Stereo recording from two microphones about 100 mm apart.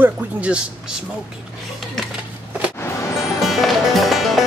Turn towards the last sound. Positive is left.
turn(degrees=0)  # may be behind; listen again after turning